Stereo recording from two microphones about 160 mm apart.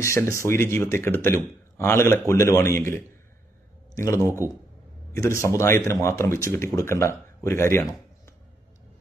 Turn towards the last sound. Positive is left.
turn(degrees=15)  # may be behind; listen again after turning